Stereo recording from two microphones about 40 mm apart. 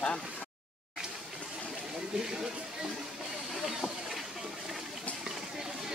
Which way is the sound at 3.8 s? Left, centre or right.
Left.